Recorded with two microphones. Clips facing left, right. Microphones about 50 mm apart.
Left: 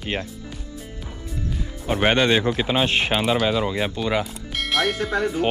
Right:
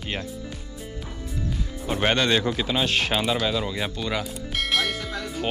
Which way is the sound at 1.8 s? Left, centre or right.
Centre.